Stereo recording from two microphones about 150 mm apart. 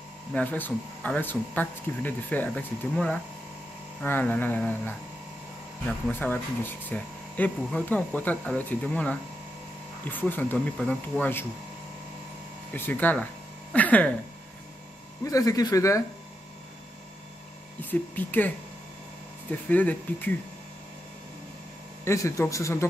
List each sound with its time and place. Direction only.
0.3 s speech: 10° left (ahead or behind)
6.0 s speech: 10° left (ahead or behind)
12.7 s speech: 10° left (ahead or behind)
15.2 s speech: 20° left (ahead or behind)
17.8 s speech: 10° left (ahead or behind)
19.7 s speech: 10° left (ahead or behind)
22.0 s speech: 20° left (ahead or behind)